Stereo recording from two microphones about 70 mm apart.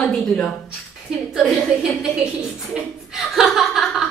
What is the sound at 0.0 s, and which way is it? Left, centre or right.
A woman's voice, centre.